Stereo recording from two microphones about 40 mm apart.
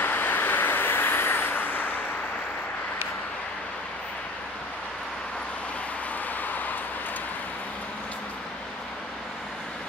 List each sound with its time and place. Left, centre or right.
0.0 s vehicle: left